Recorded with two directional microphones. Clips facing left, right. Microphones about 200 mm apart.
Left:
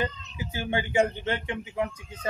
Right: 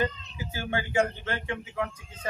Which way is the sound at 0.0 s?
20° left (ahead or behind).